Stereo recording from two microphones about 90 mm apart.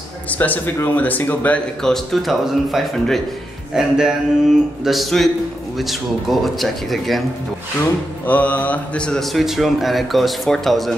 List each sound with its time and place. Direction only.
0.3 s a man's voice: 15° left (ahead or behind)
1.8 s speech: centre (ahead or behind)
6.4 s speech: centre (ahead or behind)
8.3 s speech: 15° left (ahead or behind); by 11.0 s centre (ahead or behind)